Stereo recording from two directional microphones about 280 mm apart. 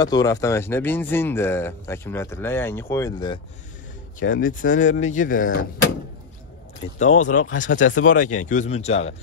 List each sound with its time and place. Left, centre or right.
0.0 s speech: centre
4.2 s speech: left
4.6 s speech: left
7.0 s speech: left
7.7 s speech: left
8.0 s speech: left